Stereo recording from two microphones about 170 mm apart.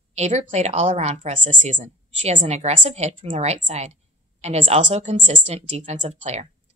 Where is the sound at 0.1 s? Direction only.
40° right (ahead or behind).